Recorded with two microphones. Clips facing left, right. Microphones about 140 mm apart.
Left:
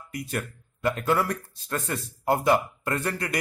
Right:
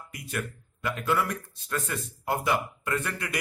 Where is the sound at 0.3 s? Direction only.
40° left (ahead or behind).